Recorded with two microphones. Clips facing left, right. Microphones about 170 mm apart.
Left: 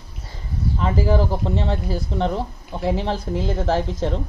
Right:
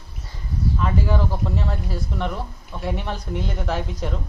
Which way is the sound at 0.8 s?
30° left (ahead or behind).